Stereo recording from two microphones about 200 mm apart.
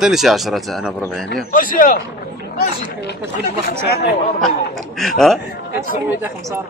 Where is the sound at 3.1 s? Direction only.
55° left (ahead or behind).